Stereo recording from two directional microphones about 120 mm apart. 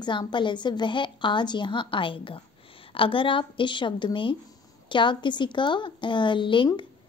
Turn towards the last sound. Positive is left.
turn(degrees=45)  # may be behind; listen again after turning